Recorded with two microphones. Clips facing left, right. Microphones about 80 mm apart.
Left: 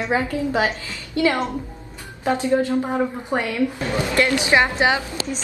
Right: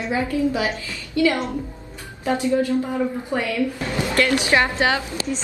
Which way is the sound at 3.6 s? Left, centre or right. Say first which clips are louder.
Left 2 dB; centre.